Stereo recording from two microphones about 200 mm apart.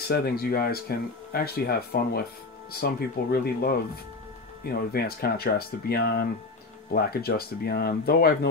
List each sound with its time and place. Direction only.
0.1 s speech: 50° left (ahead or behind)